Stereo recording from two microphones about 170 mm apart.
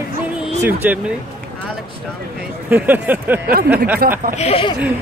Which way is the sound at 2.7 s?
10° right (ahead or behind).